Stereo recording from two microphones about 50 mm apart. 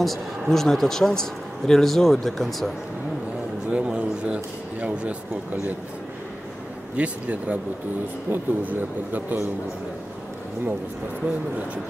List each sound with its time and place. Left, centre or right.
0.0 s a man's voice: centre
3.7 s speech: right
7.0 s speech: right
8.3 s speech: right
11.2 s speech: right